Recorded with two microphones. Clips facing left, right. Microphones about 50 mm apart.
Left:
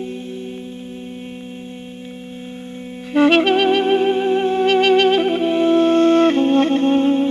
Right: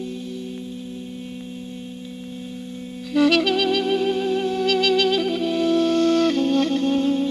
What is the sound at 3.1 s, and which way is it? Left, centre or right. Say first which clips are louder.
Music: left 4 dB; left.